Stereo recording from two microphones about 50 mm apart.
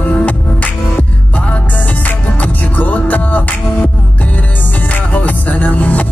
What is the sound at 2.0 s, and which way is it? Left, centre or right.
Music, left.